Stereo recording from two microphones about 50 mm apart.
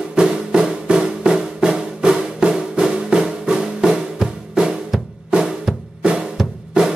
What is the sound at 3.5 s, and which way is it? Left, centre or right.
Drum, centre.